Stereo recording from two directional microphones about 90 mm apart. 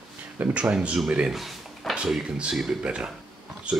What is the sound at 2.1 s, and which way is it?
Speech, 5° right (ahead or behind).